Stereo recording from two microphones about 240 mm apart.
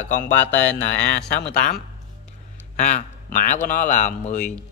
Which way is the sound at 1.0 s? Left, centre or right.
Left.